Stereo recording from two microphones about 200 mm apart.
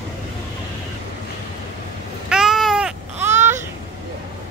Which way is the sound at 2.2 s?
Centre (ahead or behind).